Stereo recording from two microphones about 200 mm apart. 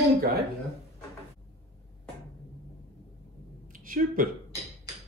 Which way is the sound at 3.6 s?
45° right (ahead or behind).